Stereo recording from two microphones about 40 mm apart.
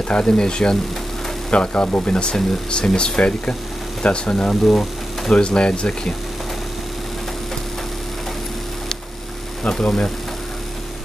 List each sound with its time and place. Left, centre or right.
0.1 s speech: left
4.6 s speech: centre
5.3 s speech: left
9.6 s speech: centre